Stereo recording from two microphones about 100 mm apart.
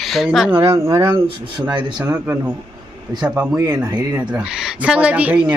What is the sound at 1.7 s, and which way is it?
Speech, 50° right (ahead or behind).